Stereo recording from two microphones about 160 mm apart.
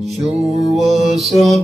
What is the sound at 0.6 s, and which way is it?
Mantra, centre (ahead or behind).